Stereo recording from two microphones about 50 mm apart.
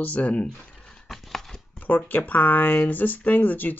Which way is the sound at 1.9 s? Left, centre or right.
Left.